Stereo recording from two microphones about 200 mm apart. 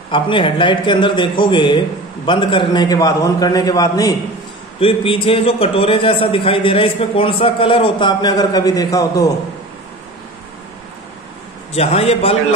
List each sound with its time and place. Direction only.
0.1 s a man's voice: 25° left (ahead or behind)
4.7 s a man's voice: 30° left (ahead or behind)
11.7 s a man's voice: 30° left (ahead or behind)